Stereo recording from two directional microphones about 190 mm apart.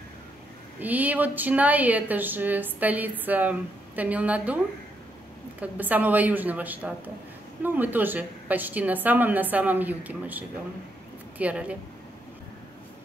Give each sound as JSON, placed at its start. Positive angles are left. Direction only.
{"t": 0.7, "sound": "speech", "side_deg": -10}
{"t": 5.6, "sound": "speech", "side_deg": -10}